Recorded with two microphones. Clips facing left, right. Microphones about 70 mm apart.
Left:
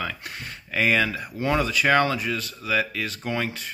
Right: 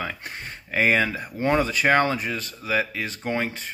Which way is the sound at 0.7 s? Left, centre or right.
Right.